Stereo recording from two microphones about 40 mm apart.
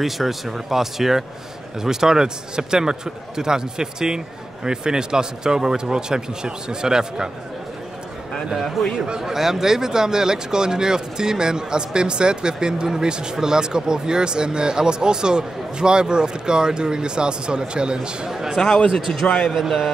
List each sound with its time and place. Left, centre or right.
0.0 s a man's voice: centre
8.5 s a man's voice: centre
18.6 s a man's voice: centre
18.9 s a man's voice: centre